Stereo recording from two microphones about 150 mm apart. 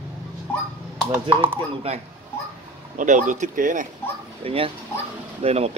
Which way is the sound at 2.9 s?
55° right (ahead or behind).